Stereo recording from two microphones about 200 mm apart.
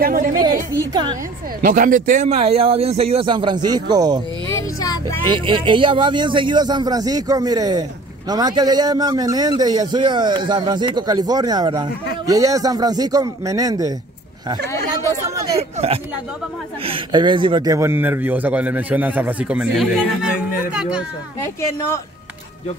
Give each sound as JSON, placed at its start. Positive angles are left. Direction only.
{"t": 0.0, "sound": "a woman's voice", "side_deg": -45}
{"t": 0.7, "sound": "a man's voice", "side_deg": -25}
{"t": 1.6, "sound": "a man's voice", "side_deg": -45}
{"t": 5.3, "sound": "a man's voice", "side_deg": -25}
{"t": 16.8, "sound": "a man's voice", "side_deg": -25}
{"t": 21.5, "sound": "speech", "side_deg": 15}